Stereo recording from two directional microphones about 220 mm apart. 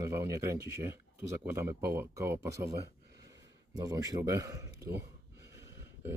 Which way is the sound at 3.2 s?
15° right (ahead or behind).